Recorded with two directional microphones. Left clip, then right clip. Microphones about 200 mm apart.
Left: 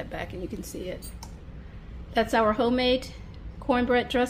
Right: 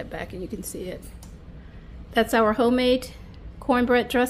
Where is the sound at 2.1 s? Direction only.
25° right (ahead or behind).